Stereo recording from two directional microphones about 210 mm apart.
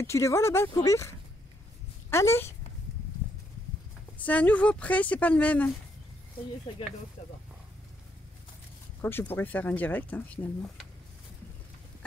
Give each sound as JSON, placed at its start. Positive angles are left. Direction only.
{"t": 0.0, "sound": "speech", "side_deg": 15}
{"t": 4.2, "sound": "speech", "side_deg": 5}
{"t": 7.2, "sound": "speech", "side_deg": 30}
{"t": 9.0, "sound": "speech", "side_deg": 10}